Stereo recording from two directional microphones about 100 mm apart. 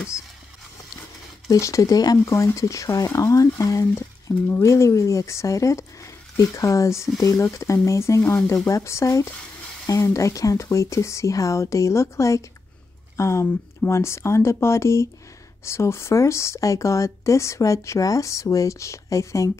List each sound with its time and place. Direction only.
1.5 s speech: 35° left (ahead or behind)